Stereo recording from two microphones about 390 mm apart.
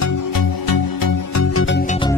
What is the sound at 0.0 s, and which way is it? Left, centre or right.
Music, left.